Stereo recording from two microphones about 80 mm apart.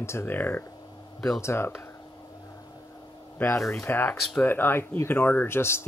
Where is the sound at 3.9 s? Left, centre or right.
Left.